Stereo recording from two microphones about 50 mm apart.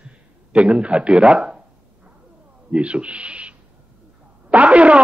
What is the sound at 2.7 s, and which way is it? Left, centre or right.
Speech, right.